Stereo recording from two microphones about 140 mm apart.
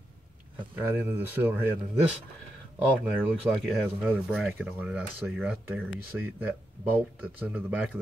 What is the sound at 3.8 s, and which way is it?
Speech, 10° right (ahead or behind).